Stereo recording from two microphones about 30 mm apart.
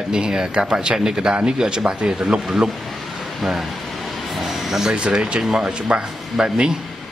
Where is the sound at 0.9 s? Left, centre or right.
Centre.